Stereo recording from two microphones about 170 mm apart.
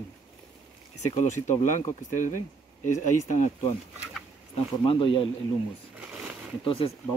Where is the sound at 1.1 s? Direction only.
45° left (ahead or behind).